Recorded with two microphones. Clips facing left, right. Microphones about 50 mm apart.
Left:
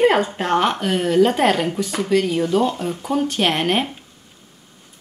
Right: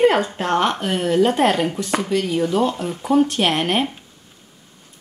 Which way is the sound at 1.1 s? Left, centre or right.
Centre.